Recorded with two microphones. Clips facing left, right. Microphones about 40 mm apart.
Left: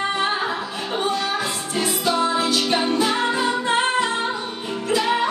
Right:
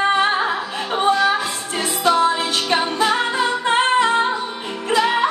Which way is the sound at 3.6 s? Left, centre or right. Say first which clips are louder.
Right 7 dB; right.